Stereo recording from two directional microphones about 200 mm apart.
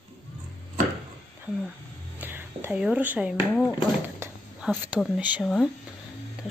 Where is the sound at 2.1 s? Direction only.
10° right (ahead or behind).